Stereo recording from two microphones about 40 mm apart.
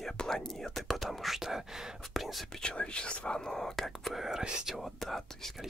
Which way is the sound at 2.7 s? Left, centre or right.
Left.